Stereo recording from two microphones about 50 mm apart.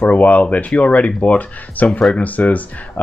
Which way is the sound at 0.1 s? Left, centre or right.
Left.